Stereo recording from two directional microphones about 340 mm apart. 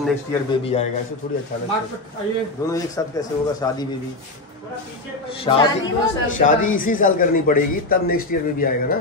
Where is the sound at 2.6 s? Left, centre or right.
Centre.